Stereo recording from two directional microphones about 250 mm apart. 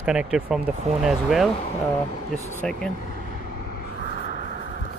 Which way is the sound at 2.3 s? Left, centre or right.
Centre.